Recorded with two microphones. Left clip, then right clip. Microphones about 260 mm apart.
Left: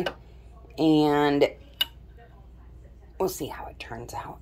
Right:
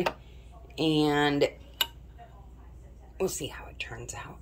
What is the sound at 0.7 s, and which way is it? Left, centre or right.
Speech, centre.